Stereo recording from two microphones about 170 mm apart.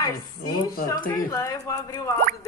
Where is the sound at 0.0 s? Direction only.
20° left (ahead or behind).